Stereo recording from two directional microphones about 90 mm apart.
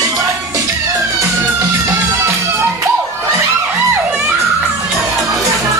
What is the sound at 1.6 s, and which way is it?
Music, 35° right (ahead or behind).